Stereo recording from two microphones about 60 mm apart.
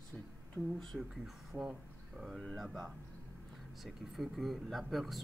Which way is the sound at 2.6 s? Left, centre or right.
Centre.